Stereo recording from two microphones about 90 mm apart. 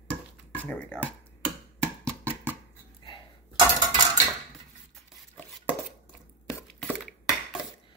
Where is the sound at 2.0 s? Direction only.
25° right (ahead or behind).